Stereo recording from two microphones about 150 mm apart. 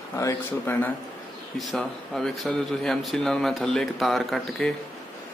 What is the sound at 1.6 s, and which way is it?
A man's voice, centre (ahead or behind).